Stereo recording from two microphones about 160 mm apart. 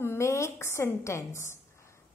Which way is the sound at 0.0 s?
15° left (ahead or behind).